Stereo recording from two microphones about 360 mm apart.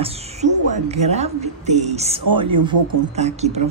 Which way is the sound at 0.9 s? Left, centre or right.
Centre.